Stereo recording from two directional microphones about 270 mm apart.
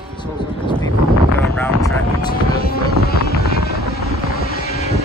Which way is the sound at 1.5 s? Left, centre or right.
Centre.